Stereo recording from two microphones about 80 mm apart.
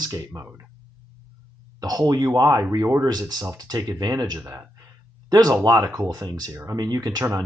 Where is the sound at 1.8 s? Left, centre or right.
Right.